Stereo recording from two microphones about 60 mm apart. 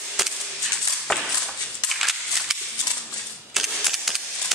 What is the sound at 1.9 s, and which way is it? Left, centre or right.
Scissors, centre.